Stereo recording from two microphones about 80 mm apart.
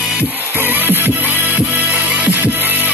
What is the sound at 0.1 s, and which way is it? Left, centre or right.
Music, right.